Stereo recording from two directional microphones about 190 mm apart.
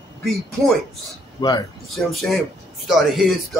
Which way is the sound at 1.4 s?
25° left (ahead or behind).